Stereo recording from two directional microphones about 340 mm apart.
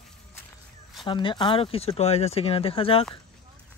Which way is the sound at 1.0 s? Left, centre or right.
Centre.